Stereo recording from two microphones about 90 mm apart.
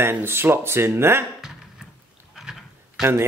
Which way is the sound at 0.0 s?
25° right (ahead or behind).